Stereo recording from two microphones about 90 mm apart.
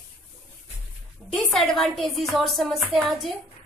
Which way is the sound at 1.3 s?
Centre (ahead or behind).